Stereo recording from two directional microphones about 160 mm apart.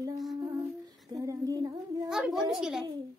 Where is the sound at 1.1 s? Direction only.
20° right (ahead or behind).